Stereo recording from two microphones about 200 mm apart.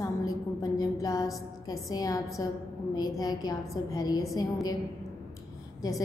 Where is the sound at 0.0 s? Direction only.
20° left (ahead or behind).